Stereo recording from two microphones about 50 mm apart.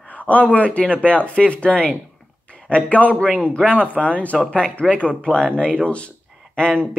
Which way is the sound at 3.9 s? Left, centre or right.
Left.